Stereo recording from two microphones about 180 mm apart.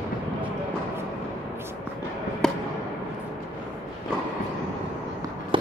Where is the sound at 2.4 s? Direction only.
Centre (ahead or behind).